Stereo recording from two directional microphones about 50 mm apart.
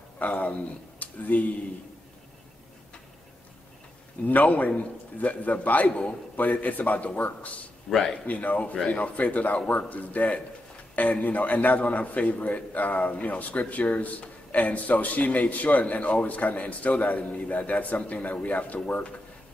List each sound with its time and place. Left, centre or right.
0.2 s speech: left
4.3 s a man's voice: left
7.9 s a man's voice: centre
8.3 s a man's voice: left